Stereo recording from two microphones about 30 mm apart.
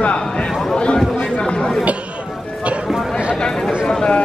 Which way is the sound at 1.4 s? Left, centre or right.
Left.